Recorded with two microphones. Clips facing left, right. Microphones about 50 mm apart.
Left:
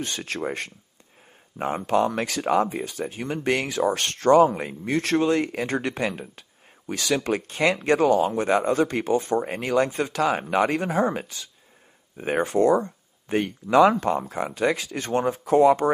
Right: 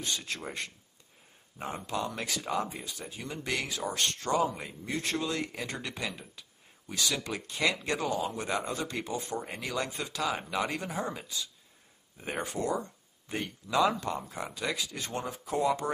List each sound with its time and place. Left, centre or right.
0.0 s speech: left